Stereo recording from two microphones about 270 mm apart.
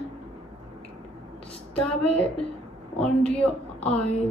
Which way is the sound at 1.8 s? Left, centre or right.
Centre.